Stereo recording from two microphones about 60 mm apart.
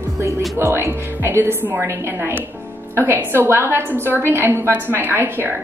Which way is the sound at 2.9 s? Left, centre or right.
Right.